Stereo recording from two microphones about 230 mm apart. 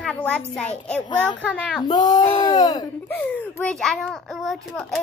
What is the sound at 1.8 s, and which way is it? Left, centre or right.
A child's voice, centre.